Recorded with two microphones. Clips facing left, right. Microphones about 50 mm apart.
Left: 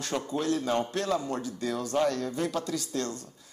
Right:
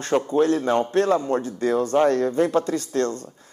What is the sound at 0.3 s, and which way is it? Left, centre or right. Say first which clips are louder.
A man's voice: right 7 dB; right.